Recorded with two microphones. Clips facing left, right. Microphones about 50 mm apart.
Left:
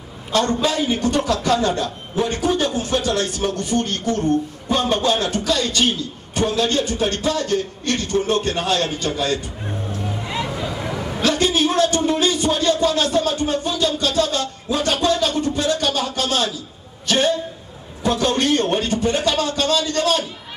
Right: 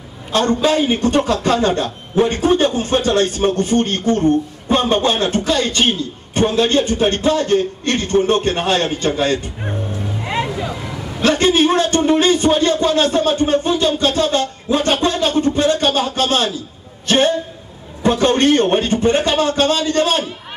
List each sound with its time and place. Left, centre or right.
0.3 s a man's voice: right
10.2 s music: right
11.1 s a man's voice: right